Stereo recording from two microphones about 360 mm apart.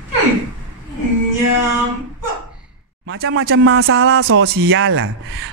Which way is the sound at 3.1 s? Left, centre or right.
Right.